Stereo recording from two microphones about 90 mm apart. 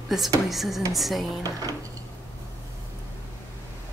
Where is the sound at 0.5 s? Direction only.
Centre (ahead or behind).